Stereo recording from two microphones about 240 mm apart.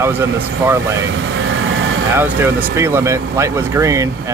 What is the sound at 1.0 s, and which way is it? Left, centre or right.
Vehicle, right.